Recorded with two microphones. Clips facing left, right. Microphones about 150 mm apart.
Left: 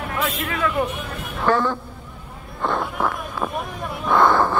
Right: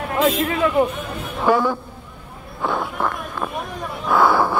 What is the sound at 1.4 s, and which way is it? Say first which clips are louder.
Speech: right 2 dB; 10° right (ahead or behind).